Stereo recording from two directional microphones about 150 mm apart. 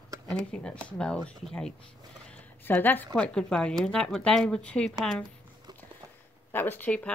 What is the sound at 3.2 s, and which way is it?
Speech, 5° left (ahead or behind).